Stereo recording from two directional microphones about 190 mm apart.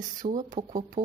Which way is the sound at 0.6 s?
40° right (ahead or behind).